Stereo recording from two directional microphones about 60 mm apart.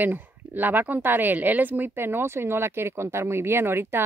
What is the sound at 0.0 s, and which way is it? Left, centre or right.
A woman's voice, right.